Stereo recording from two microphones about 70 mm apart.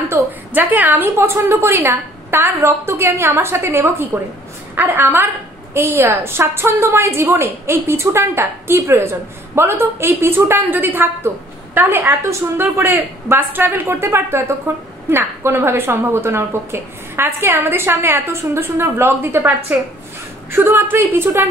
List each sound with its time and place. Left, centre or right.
0.1 s a sound: right
1.1 s a woman's voice: right
12.2 s a woman's voice: right
20.5 s a woman's voice: right